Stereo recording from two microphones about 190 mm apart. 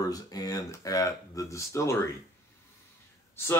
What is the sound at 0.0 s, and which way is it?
Speech, 20° left (ahead or behind).